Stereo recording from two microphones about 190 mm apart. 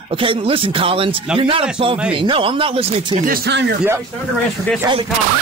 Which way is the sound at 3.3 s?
65° right (ahead or behind).